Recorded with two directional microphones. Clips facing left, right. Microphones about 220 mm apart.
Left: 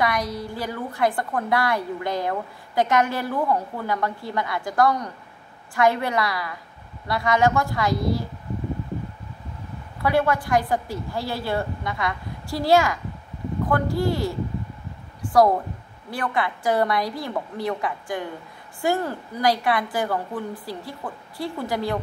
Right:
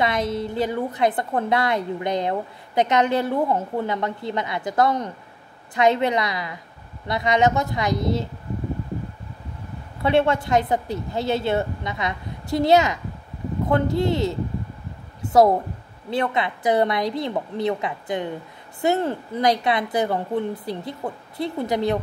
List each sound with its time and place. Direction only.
0.0 s a woman's voice: 25° right (ahead or behind)
10.0 s a woman's voice: 25° right (ahead or behind)